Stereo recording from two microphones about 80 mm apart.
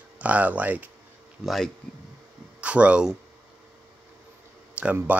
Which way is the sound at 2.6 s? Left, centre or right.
Centre.